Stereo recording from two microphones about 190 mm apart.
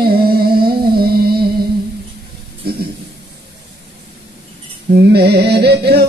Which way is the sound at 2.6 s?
55° right (ahead or behind).